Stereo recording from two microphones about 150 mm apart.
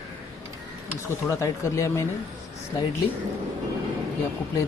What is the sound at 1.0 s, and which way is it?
Speech, 20° left (ahead or behind).